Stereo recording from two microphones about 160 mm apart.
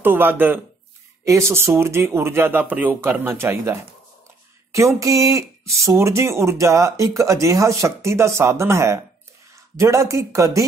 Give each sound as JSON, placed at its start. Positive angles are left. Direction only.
{"t": 0.0, "sound": "speech", "side_deg": -10}